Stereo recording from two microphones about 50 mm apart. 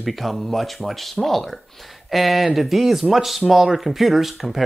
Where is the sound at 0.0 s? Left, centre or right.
Centre.